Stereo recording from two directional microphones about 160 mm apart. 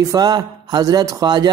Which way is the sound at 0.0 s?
25° right (ahead or behind).